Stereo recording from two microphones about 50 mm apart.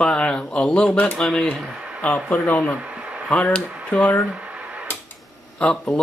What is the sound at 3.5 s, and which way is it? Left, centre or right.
Speech, left.